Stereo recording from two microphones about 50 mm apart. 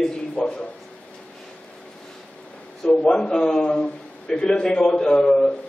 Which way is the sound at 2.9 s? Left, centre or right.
Centre.